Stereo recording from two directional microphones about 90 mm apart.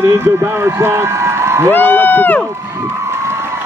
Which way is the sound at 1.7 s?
20° left (ahead or behind).